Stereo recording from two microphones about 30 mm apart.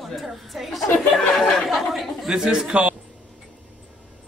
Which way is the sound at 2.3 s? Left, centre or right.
Right.